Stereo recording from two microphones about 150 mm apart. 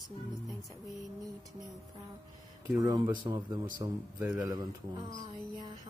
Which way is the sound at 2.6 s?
25° right (ahead or behind).